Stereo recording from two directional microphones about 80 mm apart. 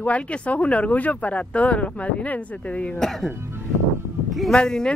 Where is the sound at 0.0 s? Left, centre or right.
Centre.